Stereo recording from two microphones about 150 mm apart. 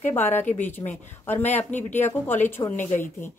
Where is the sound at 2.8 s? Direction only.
55° left (ahead or behind).